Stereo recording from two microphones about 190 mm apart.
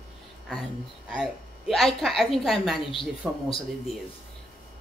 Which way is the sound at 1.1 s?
Centre (ahead or behind).